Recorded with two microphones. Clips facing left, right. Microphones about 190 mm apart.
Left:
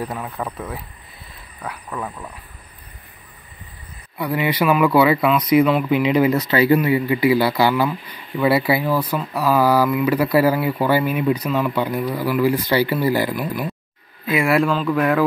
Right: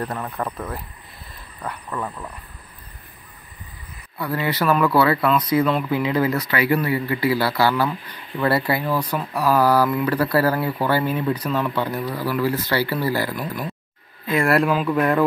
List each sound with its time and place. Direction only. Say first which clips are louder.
0.0 s speech: even; 5° left (ahead or behind)
4.2 s speech: left 3 dB; 15° left (ahead or behind)
14.4 s speech: even; centre (ahead or behind)